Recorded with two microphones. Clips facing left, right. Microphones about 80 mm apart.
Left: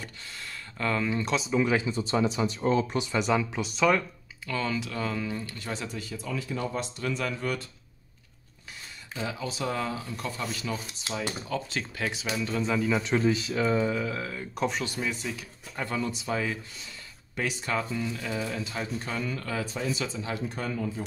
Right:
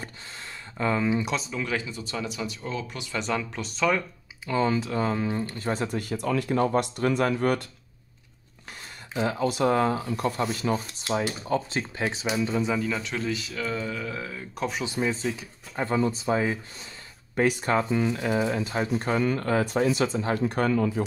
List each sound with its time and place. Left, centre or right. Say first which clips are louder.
0.4 s a sound: right 3 dB; centre
1.5 s speech: left 5 dB; centre
3.0 s speech: left 3 dB; centre
4.5 s speech: right 6 dB; right
9.2 s speech: right 8 dB; right
12.7 s speech: left 2 dB; centre
13.3 s speech: left 4 dB; left; by 14.0 s centre
14.0 s speech: left 1 dB; centre
14.9 s speech: right 5 dB; right
17.4 s speech: right 7 dB; right
17.8 s speech: right 7 dB; right
18.5 s speech: right 6 dB; right
20.4 s speech: right 8 dB; right